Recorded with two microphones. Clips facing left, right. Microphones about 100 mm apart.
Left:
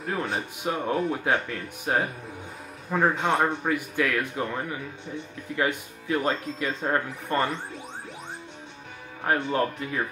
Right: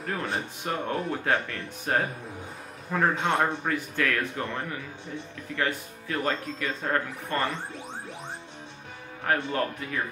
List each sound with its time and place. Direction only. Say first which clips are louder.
0.0 s speech: left 2 dB; 5° left (ahead or behind); by 7.4 s 20° left (ahead or behind)
9.2 s speech: left 2 dB; 25° left (ahead or behind)